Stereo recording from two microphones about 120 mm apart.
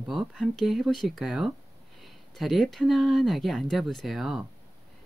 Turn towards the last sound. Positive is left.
turn(degrees=0)  # may be behind; listen again after turning